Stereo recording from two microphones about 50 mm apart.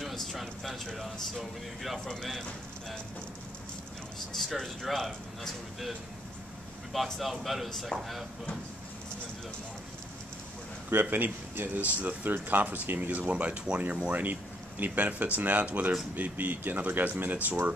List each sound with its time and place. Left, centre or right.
0.0 s a sound: centre
1.8 s speech: centre
4.3 s speech: centre
6.9 s speech: centre
10.9 s speech: right